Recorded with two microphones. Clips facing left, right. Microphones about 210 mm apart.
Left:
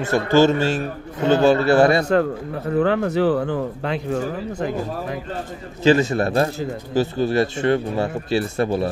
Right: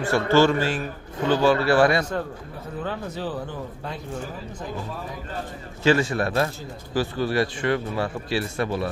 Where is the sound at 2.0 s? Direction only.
75° left (ahead or behind).